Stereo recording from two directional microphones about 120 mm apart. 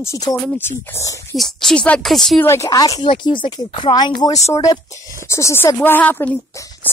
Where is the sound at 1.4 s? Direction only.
5° left (ahead or behind).